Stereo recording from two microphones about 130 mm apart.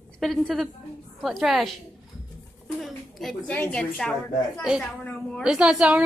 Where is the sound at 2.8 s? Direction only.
Centre (ahead or behind).